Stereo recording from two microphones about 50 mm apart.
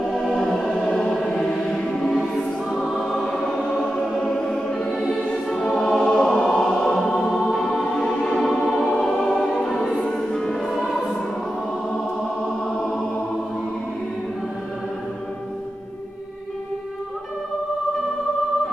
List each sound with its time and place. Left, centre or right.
0.1 s music: centre
0.5 s choir: centre
2.7 s music: centre
3.3 s choir: centre
4.5 s music: centre
5.5 s choir: centre
6.9 s music: centre
12.6 s music: centre